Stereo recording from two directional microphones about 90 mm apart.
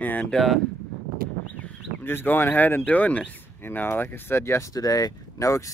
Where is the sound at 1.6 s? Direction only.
25° left (ahead or behind); by 5.6 s 40° left (ahead or behind).